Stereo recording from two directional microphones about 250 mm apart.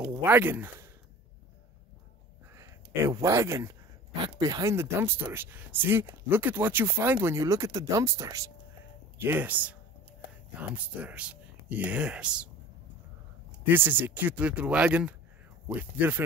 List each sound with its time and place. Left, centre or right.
0.0 s speech: centre
2.5 s speech: centre
13.7 s speech: centre